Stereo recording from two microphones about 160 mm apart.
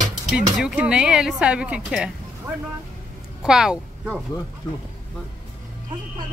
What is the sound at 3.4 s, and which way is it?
Speech, 5° right (ahead or behind).